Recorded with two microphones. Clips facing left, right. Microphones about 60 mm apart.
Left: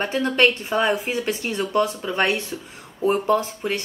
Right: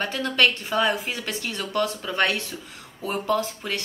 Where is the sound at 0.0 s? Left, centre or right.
Left.